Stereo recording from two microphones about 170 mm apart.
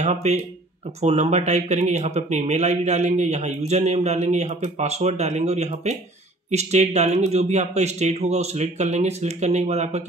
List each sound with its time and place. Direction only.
0.0 s a man's voice: 40° right (ahead or behind)